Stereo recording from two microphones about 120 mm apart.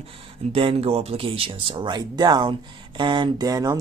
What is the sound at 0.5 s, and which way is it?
Speech, 50° right (ahead or behind).